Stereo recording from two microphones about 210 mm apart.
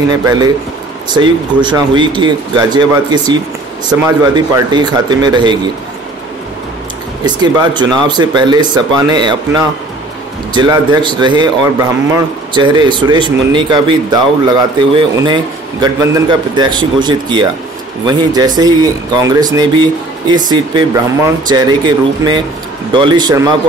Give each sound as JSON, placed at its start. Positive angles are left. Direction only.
{"t": 0.2, "sound": "speech", "side_deg": -20}
{"t": 7.2, "sound": "speech", "side_deg": -20}